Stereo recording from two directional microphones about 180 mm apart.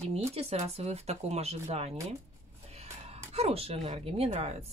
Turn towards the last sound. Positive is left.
turn(degrees=-35)  # may be behind; listen again after turning